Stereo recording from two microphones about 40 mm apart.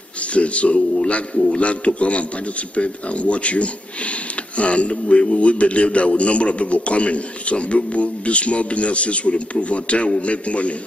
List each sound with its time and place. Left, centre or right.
0.3 s a man's voice: left